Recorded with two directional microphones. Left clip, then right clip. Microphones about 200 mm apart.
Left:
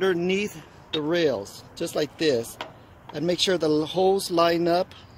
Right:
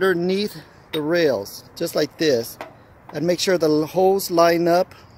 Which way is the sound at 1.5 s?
65° right (ahead or behind).